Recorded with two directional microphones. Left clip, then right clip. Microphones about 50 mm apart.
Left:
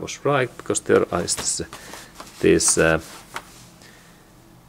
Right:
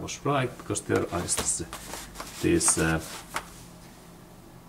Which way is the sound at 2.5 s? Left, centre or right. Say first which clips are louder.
Left 7 dB; left.